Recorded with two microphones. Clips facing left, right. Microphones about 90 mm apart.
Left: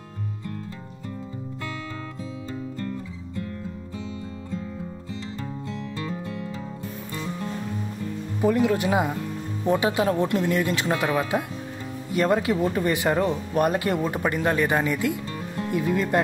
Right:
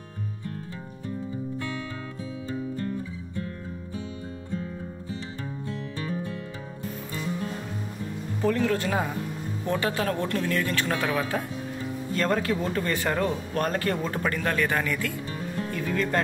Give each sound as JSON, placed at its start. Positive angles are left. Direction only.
{"t": 8.4, "sound": "speech", "side_deg": 15}